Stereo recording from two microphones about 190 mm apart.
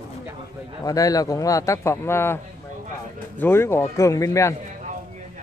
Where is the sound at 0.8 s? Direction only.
20° left (ahead or behind).